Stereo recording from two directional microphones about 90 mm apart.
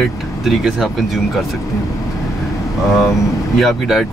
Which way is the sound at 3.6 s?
Centre (ahead or behind).